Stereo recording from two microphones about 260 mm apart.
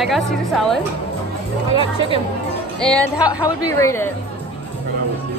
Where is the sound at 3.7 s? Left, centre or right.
Centre.